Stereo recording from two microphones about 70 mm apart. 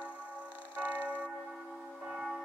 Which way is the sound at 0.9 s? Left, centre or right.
Left.